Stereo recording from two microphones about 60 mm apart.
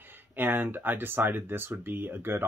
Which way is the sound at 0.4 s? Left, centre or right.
Right.